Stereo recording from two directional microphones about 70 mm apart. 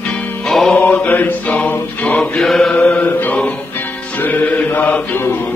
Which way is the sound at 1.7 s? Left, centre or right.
Left.